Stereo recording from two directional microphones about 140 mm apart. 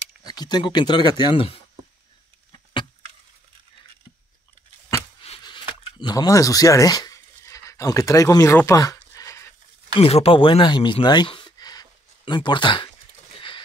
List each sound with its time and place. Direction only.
0.2 s speech: 30° left (ahead or behind)
2.5 s vehicle: 35° left (ahead or behind)
5.4 s a sound: 30° left (ahead or behind)
9.9 s speech: 45° left (ahead or behind)